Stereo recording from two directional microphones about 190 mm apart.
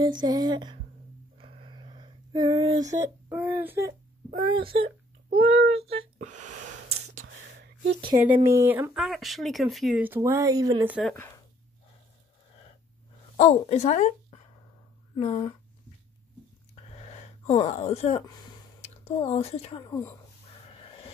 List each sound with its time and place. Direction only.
0.0 s speech: 20° right (ahead or behind)
1.4 s a sound: 30° right (ahead or behind); by 3.9 s 10° right (ahead or behind)
4.4 s speech: 25° right (ahead or behind)
5.5 s speech: 90° right
5.8 s speech: 30° right (ahead or behind)
7.2 s a sound: 80° right
8.2 s speech: 10° right (ahead or behind)
10.9 s a woman's voice: centre (ahead or behind)
13.4 s a woman's voice: 35° left (ahead or behind)
16.9 s a sound: 35° left (ahead or behind)
17.6 s speech: 35° left (ahead or behind)
20.7 s snort: 30° left (ahead or behind)